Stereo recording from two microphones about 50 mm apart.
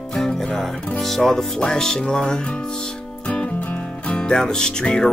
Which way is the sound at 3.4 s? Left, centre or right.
Left.